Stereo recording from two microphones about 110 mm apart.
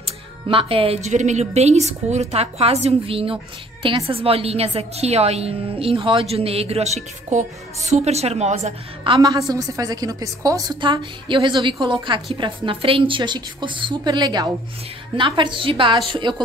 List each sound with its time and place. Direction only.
0.0 s a woman's voice: 55° right (ahead or behind); by 8.7 s 80° right
9.1 s a woman's voice: 55° right (ahead or behind)
9.5 s a woman's voice: 35° right (ahead or behind)
10.8 s a woman's voice: 50° right (ahead or behind)